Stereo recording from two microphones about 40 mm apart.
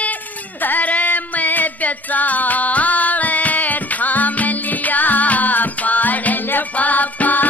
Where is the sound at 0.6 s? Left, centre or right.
Left.